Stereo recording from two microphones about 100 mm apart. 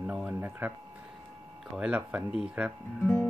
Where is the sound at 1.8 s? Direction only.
10° right (ahead or behind).